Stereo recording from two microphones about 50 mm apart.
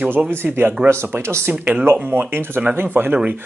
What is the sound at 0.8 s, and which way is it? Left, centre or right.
Speech, right.